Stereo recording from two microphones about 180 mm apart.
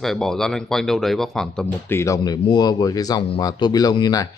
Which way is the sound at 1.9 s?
15° left (ahead or behind).